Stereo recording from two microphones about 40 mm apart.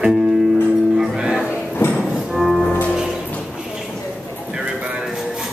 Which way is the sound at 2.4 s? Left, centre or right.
Centre.